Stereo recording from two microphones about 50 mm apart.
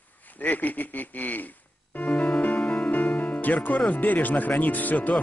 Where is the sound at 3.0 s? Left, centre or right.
Left.